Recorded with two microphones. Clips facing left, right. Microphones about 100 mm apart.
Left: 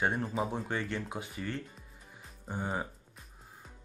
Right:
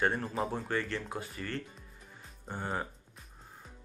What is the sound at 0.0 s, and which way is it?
Speech, 10° left (ahead or behind).